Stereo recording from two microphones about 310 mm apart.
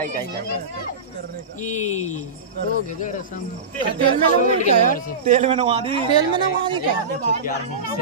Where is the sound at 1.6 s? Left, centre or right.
Left.